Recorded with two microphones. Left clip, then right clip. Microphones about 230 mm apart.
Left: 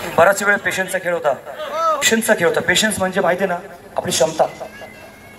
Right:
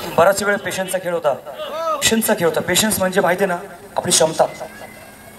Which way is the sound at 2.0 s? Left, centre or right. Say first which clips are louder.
Even; right.